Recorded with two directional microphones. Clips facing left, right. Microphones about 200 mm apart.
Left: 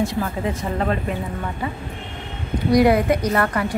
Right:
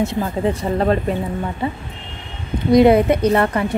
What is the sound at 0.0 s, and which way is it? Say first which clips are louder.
A woman's voice: right 3 dB; 25° right (ahead or behind).